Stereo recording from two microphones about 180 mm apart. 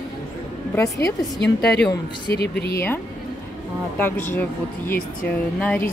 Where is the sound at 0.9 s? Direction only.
65° left (ahead or behind).